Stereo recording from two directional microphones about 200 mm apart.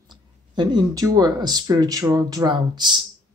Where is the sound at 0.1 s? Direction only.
20° right (ahead or behind).